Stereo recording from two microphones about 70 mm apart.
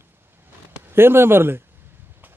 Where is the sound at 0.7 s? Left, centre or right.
Right.